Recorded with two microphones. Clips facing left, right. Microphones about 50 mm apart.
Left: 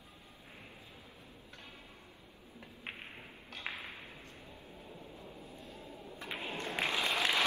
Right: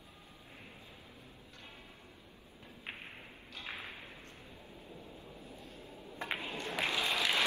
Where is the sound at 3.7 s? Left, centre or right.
Left.